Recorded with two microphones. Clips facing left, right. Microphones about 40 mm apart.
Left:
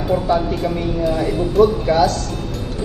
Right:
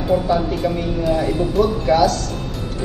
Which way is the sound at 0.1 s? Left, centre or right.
Centre.